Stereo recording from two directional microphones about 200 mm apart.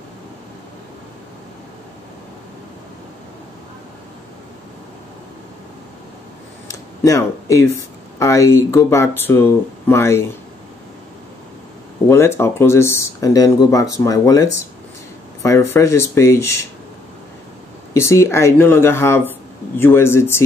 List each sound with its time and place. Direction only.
6.7 s a sound: 15° left (ahead or behind)
8.2 s speech: 15° left (ahead or behind)
12.1 s speech: 10° left (ahead or behind)
17.9 s speech: 15° left (ahead or behind)